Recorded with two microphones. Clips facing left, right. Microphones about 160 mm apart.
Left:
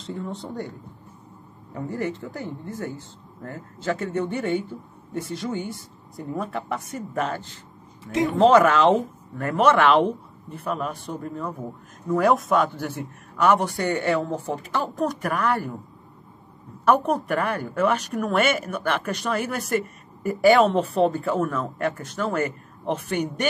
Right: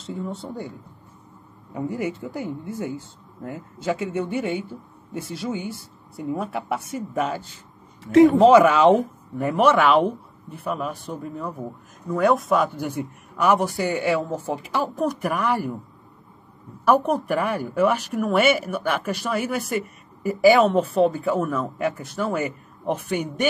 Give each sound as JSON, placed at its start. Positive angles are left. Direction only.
{"t": 0.0, "sound": "a woman's voice", "side_deg": -5}
{"t": 1.7, "sound": "speech", "side_deg": -10}
{"t": 8.0, "sound": "speech", "side_deg": -70}
{"t": 8.3, "sound": "a woman's voice", "side_deg": -5}
{"t": 12.7, "sound": "speech", "side_deg": -10}
{"t": 16.8, "sound": "a woman's voice", "side_deg": -10}